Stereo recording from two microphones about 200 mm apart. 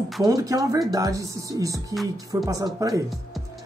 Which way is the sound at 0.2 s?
15° right (ahead or behind).